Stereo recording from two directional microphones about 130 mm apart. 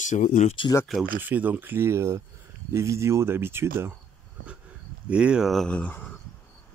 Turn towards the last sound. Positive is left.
turn(degrees=10)  # may be behind; listen again after turning